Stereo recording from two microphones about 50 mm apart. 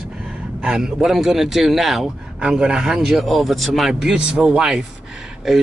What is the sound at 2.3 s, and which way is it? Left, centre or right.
Speech, centre.